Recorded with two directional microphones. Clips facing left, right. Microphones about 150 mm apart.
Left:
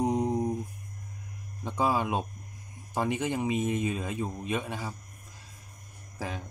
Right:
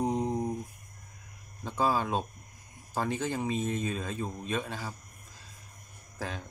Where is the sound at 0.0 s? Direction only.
15° left (ahead or behind).